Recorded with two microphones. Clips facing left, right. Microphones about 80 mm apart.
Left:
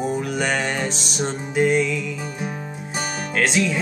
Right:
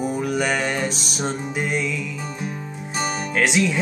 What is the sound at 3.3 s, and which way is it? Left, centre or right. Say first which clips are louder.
Music: even; centre.